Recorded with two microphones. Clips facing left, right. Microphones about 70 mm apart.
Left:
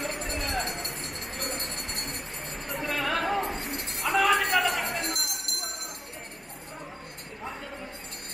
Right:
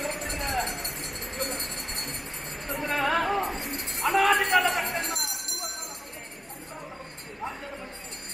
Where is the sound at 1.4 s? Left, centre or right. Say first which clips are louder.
Right 2 dB; right.